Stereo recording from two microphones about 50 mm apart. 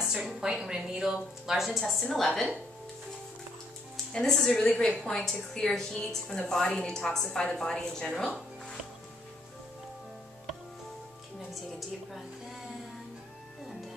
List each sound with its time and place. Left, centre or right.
0.0 s a sound: centre
0.3 s a woman's voice: centre
3.9 s a woman's voice: centre
8.2 s music: centre